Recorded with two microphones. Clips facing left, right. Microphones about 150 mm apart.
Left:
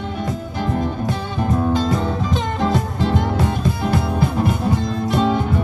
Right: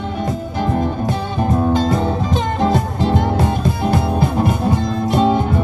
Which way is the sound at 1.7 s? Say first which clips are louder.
Right 3 dB; 55° right (ahead or behind).